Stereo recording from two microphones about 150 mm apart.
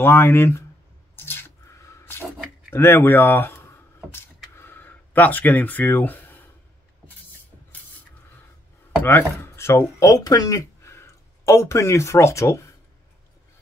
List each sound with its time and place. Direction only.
0.0 s speech: 15° left (ahead or behind)
1.1 s a sound: 15° left (ahead or behind)
9.0 s speech: 15° left (ahead or behind)